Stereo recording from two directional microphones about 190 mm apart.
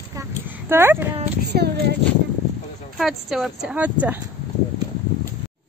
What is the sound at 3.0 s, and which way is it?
Speech, centre (ahead or behind).